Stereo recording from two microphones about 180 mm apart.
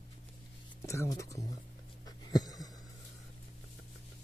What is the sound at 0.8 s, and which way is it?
Speech, 15° left (ahead or behind).